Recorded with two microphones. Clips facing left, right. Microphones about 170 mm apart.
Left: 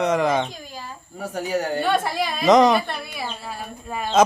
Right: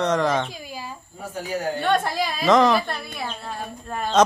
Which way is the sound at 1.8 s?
Centre (ahead or behind).